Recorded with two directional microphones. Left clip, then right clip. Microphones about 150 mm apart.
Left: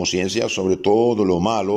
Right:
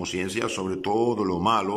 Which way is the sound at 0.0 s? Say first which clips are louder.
Left 7 dB; 20° left (ahead or behind).